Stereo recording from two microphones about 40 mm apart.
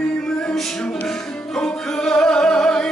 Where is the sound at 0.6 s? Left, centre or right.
Centre.